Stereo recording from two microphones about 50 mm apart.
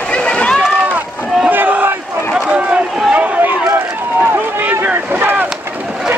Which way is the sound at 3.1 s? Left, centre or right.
Right.